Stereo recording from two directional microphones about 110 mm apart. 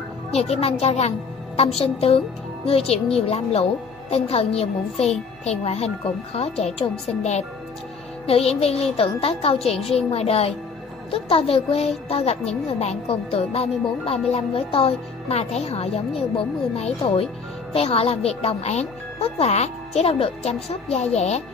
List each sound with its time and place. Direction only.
0.3 s speech: 70° left (ahead or behind)
1.6 s speech: 65° left (ahead or behind)
8.3 s speech: 65° left (ahead or behind)